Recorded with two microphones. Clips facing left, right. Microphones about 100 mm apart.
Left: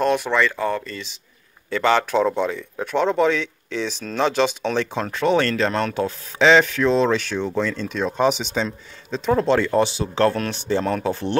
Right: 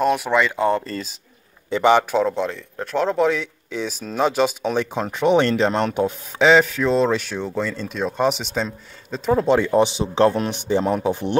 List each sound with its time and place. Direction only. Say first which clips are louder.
0.0 s speech: right 1 dB; 5° right (ahead or behind); by 0.8 s 20° right (ahead or behind)
0.8 s speech: right 4 dB; 40° right (ahead or behind)
1.7 s speech: right 3 dB; 15° right (ahead or behind)
2.2 s speech: left 1 dB; centre (ahead or behind); by 11.3 s 15° right (ahead or behind)